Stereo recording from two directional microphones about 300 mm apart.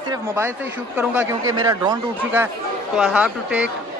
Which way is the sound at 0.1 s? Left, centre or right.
Centre.